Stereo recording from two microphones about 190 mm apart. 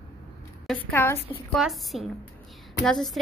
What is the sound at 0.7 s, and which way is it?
Speech, 10° left (ahead or behind).